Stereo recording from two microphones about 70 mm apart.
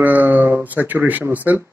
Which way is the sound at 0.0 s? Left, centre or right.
Right.